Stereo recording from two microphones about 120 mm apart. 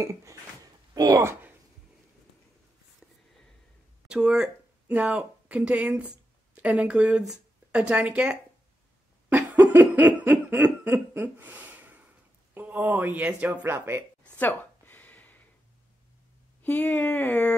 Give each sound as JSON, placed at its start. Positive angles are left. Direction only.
{"t": 0.0, "sound": "speech", "side_deg": -25}
{"t": 4.1, "sound": "speech", "side_deg": -5}
{"t": 9.3, "sound": "laughter", "side_deg": -15}
{"t": 12.5, "sound": "speech", "side_deg": -15}
{"t": 14.2, "sound": "a sound", "side_deg": 10}
{"t": 16.6, "sound": "speech", "side_deg": 10}